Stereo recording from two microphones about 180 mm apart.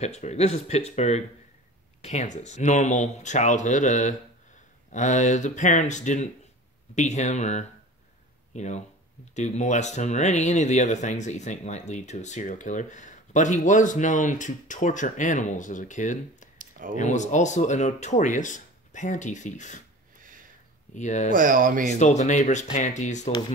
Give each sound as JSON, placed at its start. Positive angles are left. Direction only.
{"t": 0.0, "sound": "speech", "side_deg": 40}
{"t": 16.5, "sound": "a sound", "side_deg": -50}
{"t": 16.9, "sound": "speech", "side_deg": 40}
{"t": 20.2, "sound": "a sound", "side_deg": -50}
{"t": 20.9, "sound": "speech", "side_deg": 40}
{"t": 21.3, "sound": "speech", "side_deg": -50}
{"t": 21.9, "sound": "speech", "side_deg": 40}